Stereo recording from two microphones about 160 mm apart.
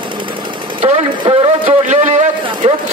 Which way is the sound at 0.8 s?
40° right (ahead or behind).